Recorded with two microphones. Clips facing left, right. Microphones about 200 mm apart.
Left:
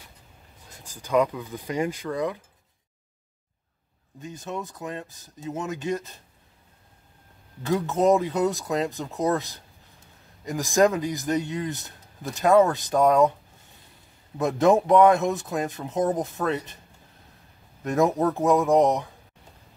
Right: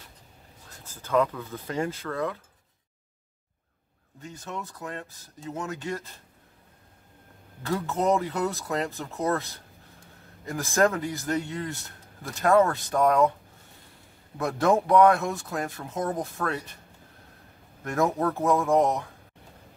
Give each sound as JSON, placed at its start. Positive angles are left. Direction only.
{"t": 0.8, "sound": "speech", "side_deg": 15}
{"t": 4.2, "sound": "speech", "side_deg": 20}
{"t": 7.6, "sound": "speech", "side_deg": 20}
{"t": 14.4, "sound": "speech", "side_deg": 20}
{"t": 17.8, "sound": "speech", "side_deg": 20}